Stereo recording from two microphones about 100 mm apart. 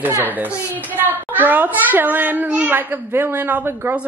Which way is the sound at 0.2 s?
20° right (ahead or behind).